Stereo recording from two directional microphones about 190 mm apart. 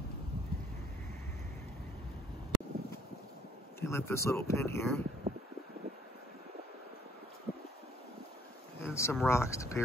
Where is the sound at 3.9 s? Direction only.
15° left (ahead or behind).